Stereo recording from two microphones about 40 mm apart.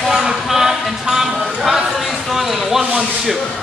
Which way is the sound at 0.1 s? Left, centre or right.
Centre.